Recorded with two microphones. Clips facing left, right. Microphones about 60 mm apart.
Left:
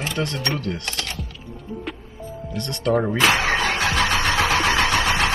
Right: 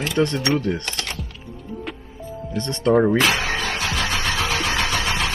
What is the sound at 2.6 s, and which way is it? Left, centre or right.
Speech, centre.